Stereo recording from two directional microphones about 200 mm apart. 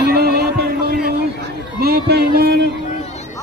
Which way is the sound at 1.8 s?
50° right (ahead or behind).